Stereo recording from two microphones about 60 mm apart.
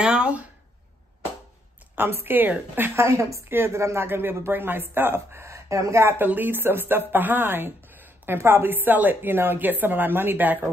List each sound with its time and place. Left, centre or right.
0.0 s speech: centre
2.0 s speech: right
3.0 s a woman's voice: right
3.4 s speech: right
6.0 s speech: right